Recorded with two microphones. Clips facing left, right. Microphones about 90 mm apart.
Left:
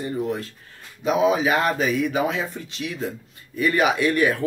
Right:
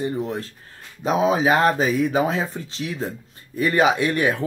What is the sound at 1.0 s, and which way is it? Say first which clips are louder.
Speech: even; 35° right (ahead or behind).